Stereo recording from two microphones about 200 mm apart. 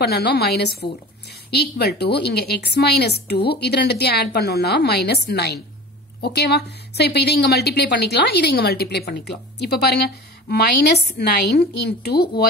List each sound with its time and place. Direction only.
0.0 s a woman's voice: 55° left (ahead or behind)